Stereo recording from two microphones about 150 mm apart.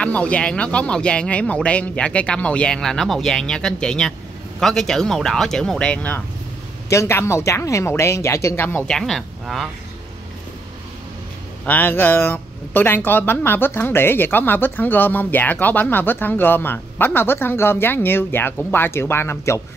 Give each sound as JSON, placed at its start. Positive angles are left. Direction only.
{"t": 0.0, "sound": "speech", "side_deg": 10}
{"t": 6.9, "sound": "speech", "side_deg": 20}
{"t": 11.6, "sound": "speech", "side_deg": 10}